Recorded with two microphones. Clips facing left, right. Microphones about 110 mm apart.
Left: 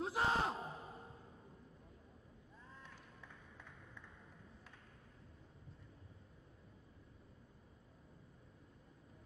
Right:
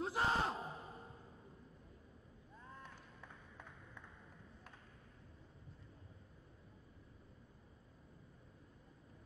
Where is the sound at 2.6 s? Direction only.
50° right (ahead or behind).